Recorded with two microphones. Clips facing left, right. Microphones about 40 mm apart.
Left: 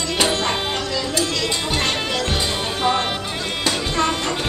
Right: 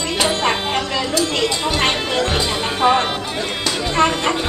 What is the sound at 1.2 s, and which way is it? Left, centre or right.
Speech, right.